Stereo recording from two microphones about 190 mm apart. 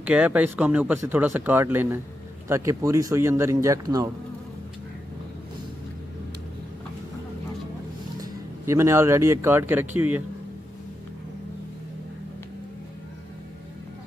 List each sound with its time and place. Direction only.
0.0 s speech: 5° right (ahead or behind)
8.2 s speech: 15° right (ahead or behind)